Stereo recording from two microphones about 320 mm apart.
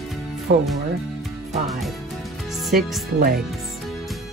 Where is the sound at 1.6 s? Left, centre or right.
Centre.